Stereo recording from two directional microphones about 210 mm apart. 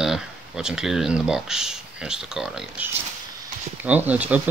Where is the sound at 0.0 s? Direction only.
5° right (ahead or behind).